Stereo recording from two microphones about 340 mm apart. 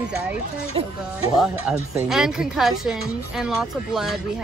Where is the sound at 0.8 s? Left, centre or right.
Centre.